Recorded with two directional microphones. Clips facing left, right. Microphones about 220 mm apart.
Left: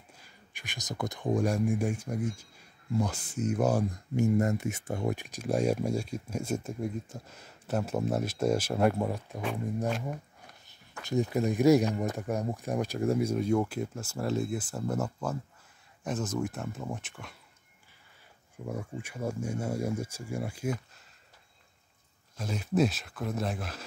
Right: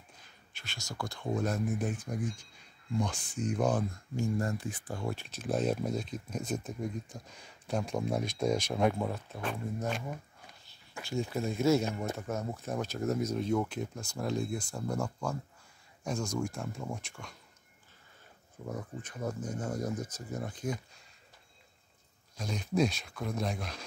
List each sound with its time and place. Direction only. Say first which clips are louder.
0.2 s speech: left 4 dB; 15° left (ahead or behind)
11.1 s speech: left 5 dB; 15° left (ahead or behind)
18.7 s speech: left 3 dB; 10° left (ahead or behind)
22.4 s speech: left 2 dB; 5° left (ahead or behind)